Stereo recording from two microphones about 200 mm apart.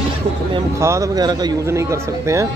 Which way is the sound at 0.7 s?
15° right (ahead or behind).